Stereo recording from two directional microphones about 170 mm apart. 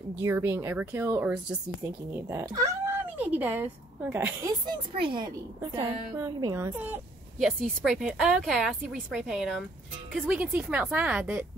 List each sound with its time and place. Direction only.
0.1 s speech: 15° right (ahead or behind)
4.6 s a woman's voice: 30° right (ahead or behind); by 7.0 s 15° right (ahead or behind)
7.3 s a woman's voice: centre (ahead or behind)